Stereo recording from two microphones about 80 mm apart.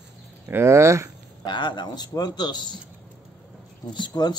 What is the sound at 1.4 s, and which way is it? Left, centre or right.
A man's voice, left.